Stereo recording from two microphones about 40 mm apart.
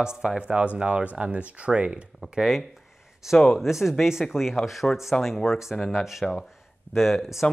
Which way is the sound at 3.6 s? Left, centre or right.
Centre.